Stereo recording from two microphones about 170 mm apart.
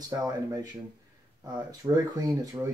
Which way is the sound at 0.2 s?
20° right (ahead or behind).